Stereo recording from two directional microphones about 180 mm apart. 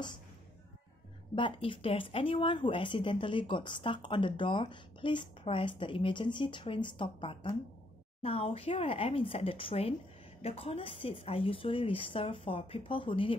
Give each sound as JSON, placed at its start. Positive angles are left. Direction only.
{"t": 1.3, "sound": "a woman's voice", "side_deg": 30}